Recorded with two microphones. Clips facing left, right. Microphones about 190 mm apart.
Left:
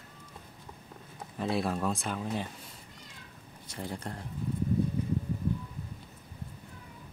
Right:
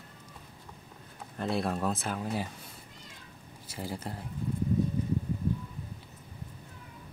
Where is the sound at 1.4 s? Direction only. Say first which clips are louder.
Even; centre (ahead or behind).